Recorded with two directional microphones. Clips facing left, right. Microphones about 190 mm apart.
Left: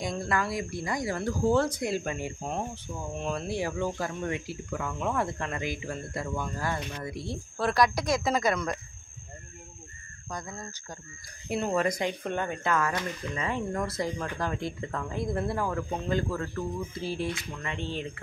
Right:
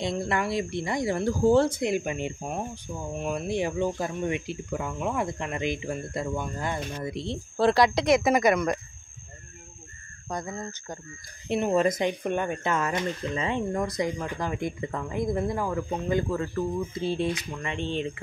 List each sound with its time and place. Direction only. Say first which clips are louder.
0.0 s speech: right 2 dB; 25° right (ahead or behind)
10.3 s speech: right 5 dB; 20° right (ahead or behind)